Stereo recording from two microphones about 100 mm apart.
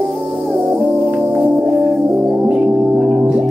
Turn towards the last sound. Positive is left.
turn(degrees=-10)  # may be behind; listen again after turning